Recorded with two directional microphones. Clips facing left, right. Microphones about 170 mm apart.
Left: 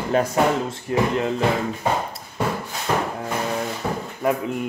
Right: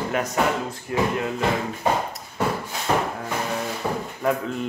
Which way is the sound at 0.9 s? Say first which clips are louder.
Left 3 dB; 25° left (ahead or behind).